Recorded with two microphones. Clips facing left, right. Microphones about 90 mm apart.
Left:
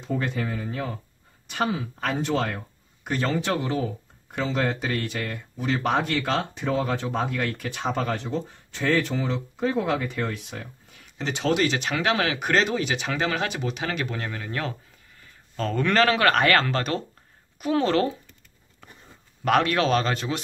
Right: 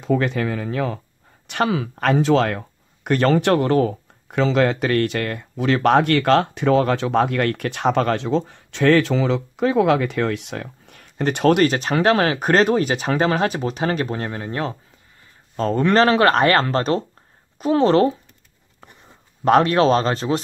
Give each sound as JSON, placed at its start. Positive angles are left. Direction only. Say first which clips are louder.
{"t": 0.0, "sound": "speech", "louder": "right 8 dB", "side_deg": -90}
{"t": 19.4, "sound": "speech", "louder": "right 7 dB", "side_deg": -30}